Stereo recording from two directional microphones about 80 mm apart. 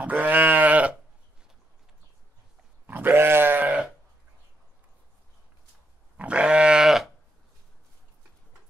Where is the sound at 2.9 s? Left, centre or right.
Right.